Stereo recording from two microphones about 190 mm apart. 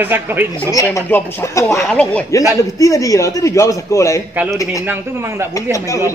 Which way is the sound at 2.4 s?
15° left (ahead or behind).